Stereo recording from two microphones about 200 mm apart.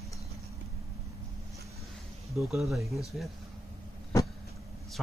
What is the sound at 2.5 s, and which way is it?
Speech, centre (ahead or behind).